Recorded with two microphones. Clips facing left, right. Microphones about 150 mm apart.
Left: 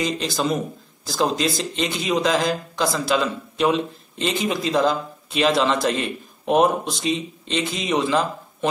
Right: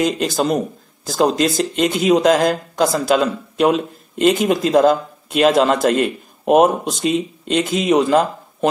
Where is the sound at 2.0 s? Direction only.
45° right (ahead or behind).